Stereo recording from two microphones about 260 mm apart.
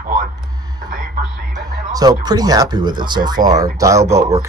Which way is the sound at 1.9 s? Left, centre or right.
Centre.